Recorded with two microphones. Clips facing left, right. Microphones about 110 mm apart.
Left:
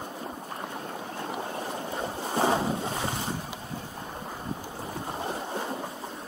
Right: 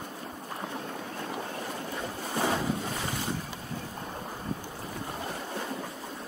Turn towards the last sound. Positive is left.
turn(degrees=30)  # may be behind; listen again after turning